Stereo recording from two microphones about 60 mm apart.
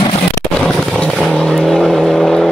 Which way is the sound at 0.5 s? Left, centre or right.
Centre.